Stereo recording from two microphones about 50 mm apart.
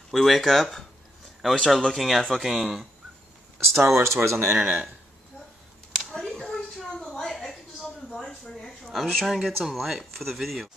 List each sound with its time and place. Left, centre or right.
0.1 s speech: centre
4.0 s speech: right
6.1 s a sound: centre
9.6 s speech: centre